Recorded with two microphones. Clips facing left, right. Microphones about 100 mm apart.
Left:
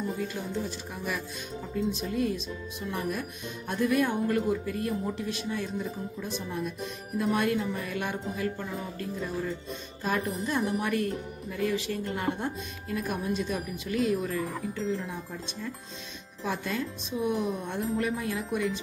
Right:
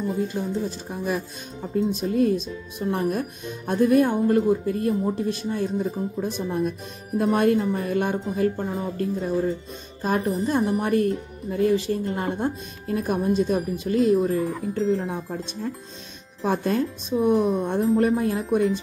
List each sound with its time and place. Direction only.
0.3 s speech: 30° right (ahead or behind)